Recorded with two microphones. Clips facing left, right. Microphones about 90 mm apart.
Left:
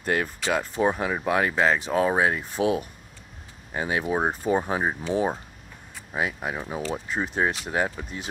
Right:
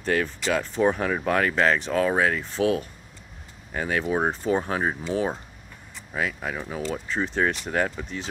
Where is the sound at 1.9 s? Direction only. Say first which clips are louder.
Even; 20° left (ahead or behind).